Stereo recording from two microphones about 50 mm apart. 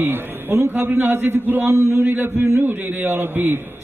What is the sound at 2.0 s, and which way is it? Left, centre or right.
A man's voice, right.